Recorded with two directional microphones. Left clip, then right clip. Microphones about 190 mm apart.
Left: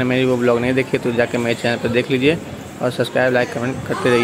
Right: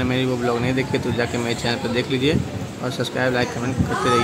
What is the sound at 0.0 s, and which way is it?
A man's voice, 5° left (ahead or behind).